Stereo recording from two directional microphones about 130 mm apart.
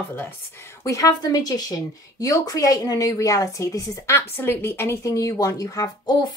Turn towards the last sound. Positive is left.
turn(degrees=30)  # may be behind; listen again after turning